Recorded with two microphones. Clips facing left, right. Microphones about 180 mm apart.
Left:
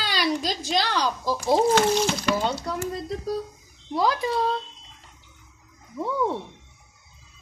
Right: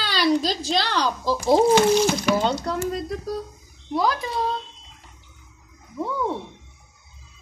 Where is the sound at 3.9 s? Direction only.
25° left (ahead or behind).